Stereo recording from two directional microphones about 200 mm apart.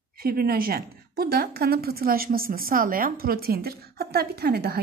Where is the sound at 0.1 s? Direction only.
50° right (ahead or behind).